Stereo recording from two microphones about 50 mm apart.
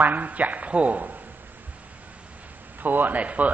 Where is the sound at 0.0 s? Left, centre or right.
Right.